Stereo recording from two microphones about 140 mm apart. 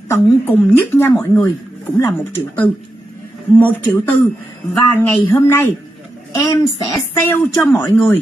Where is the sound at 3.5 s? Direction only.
10° left (ahead or behind).